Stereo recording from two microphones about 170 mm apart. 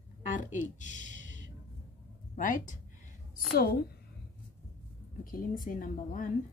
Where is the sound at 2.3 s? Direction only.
50° left (ahead or behind).